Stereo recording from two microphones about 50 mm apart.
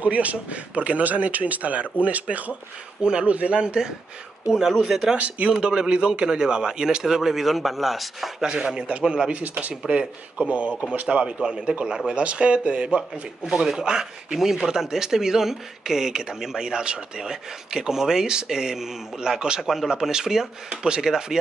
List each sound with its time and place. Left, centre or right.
0.0 s a man's voice: right
3.0 s a man's voice: centre
5.1 s a man's voice: right
5.5 s speech: centre
8.4 s speech: centre
9.3 s speech: right
9.8 s a man's voice: centre
13.5 s speech: centre